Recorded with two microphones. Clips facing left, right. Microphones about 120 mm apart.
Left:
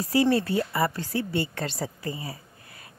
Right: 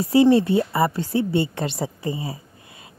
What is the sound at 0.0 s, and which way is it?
A woman's voice, 25° right (ahead or behind).